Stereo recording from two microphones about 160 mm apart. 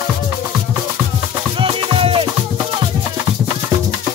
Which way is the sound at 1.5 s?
35° right (ahead or behind).